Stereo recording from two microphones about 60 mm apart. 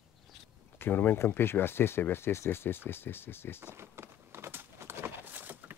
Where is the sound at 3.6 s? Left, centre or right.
Right.